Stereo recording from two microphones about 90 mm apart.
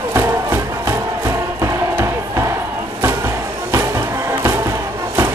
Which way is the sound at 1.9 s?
35° right (ahead or behind).